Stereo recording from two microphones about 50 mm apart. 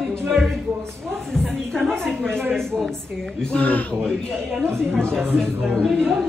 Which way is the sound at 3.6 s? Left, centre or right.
Left.